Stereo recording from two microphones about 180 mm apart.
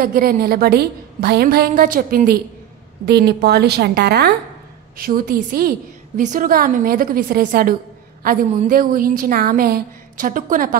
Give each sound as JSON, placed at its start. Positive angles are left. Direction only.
{"t": 0.0, "sound": "a woman's voice", "side_deg": -55}
{"t": 3.1, "sound": "a woman's voice", "side_deg": -65}
{"t": 4.9, "sound": "a woman's voice", "side_deg": -55}